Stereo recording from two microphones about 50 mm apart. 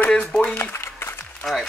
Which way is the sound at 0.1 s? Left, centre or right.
Centre.